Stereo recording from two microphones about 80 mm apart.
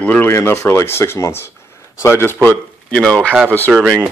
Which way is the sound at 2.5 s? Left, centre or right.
Centre.